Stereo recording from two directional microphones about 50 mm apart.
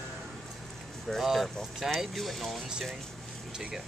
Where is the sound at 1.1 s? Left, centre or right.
Centre.